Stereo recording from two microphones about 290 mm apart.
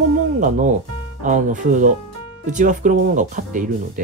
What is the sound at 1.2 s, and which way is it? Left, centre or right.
Speech, right.